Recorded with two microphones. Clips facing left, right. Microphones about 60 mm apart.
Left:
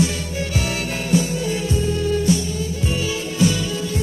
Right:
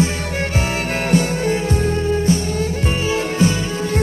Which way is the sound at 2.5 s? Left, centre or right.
Right.